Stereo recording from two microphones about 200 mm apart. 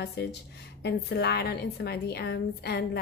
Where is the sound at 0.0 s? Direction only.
55° left (ahead or behind).